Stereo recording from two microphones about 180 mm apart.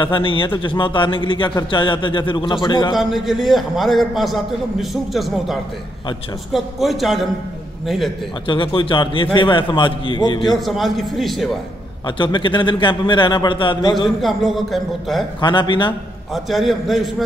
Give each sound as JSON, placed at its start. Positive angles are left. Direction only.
{"t": 0.0, "sound": "a man's voice", "side_deg": 30}
{"t": 3.0, "sound": "a man's voice", "side_deg": 0}
{"t": 8.5, "sound": "a man's voice", "side_deg": 25}
{"t": 10.6, "sound": "a man's voice", "side_deg": 0}
{"t": 12.2, "sound": "a man's voice", "side_deg": 25}
{"t": 14.2, "sound": "a man's voice", "side_deg": 0}
{"t": 15.4, "sound": "a man's voice", "side_deg": 25}
{"t": 16.4, "sound": "a man's voice", "side_deg": 0}